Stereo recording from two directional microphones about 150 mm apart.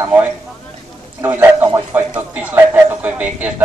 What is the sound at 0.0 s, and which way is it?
A man's voice, 15° right (ahead or behind).